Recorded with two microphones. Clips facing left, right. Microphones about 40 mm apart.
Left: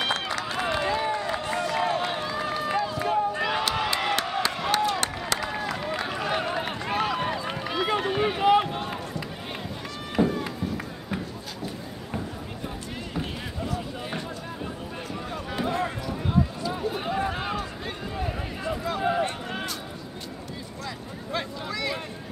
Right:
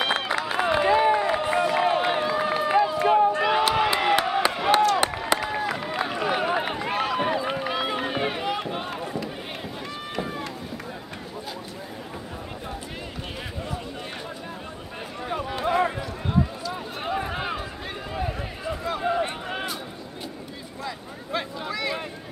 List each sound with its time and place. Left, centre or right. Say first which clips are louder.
0.0 s run: right 3 dB; centre
3.3 s a sound: right 5 dB; centre
4.9 s run: right 5 dB; centre
8.4 s run: left 8 dB; centre
8.6 s run: right 1 dB; centre
10.2 s run: left 8 dB; centre
13.7 s a sound: left 1 dB; centre
15.6 s run: right 5 dB; centre
16.7 s run: left 1 dB; centre
18.6 s a sound: left 1 dB; centre
19.2 s a sound: even; centre
20.8 s vehicle: right 4 dB; centre